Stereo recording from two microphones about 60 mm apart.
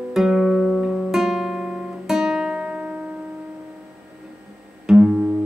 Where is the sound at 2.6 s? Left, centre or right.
Right.